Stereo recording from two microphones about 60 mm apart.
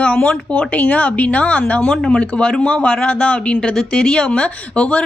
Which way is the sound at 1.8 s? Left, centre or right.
Centre.